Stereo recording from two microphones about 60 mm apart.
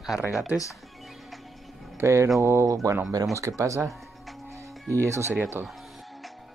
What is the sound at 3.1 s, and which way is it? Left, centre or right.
Speech, right.